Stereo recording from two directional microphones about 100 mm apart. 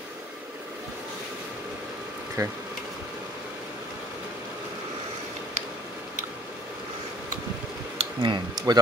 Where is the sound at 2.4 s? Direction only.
35° right (ahead or behind).